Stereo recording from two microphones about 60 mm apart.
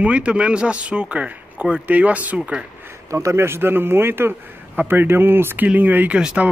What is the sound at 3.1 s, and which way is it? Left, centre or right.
Speech, right.